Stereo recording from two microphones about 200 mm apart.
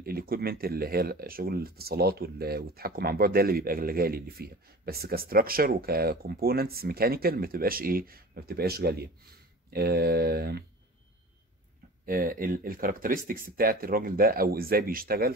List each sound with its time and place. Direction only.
0.0 s speech: 50° right (ahead or behind)
12.1 s speech: 45° right (ahead or behind)